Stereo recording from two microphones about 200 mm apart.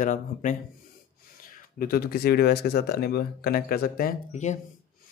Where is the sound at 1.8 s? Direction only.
50° left (ahead or behind).